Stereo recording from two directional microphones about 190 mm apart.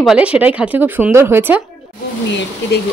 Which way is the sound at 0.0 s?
5° right (ahead or behind).